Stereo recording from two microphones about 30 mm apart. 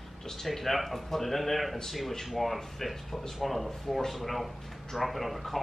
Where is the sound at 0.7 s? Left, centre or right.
Centre.